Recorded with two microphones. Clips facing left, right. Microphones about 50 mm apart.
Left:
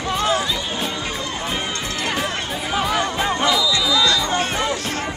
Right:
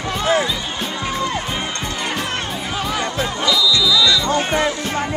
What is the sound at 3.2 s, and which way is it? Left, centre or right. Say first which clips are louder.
Music: left 1 dB; left.